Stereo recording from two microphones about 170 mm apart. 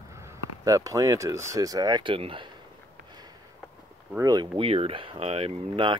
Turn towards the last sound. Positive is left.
turn(degrees=-30)  # may be behind; listen again after turning